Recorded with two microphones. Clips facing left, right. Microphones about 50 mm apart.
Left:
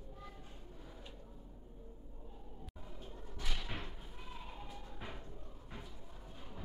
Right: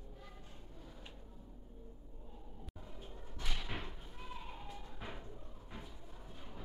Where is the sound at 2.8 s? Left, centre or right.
Centre.